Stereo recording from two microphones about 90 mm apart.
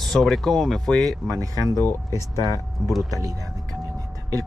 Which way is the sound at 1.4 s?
40° right (ahead or behind).